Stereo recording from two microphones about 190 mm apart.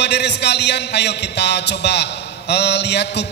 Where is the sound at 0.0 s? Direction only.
65° left (ahead or behind).